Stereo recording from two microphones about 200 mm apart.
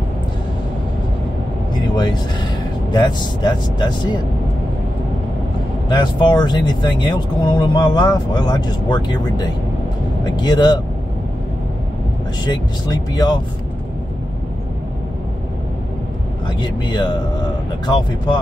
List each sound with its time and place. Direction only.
1.7 s vehicle: 20° left (ahead or behind)
2.9 s speech: 20° left (ahead or behind)
5.9 s speech: 20° left (ahead or behind)
12.4 s speech: 20° left (ahead or behind)
16.4 s speech: 20° left (ahead or behind)